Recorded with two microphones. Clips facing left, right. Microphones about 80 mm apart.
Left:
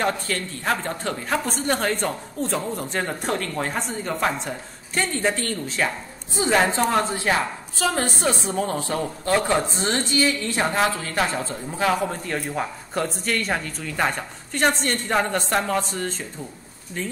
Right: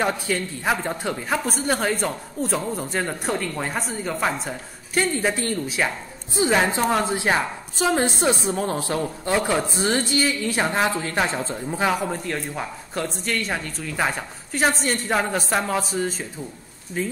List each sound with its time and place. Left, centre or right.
0.0 s a woman's voice: centre
6.9 s a woman's voice: centre
10.7 s speech: right
11.9 s a woman's voice: centre
12.3 s a woman's voice: centre